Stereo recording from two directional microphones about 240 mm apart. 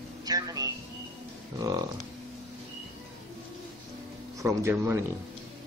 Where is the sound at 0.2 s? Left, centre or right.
Centre.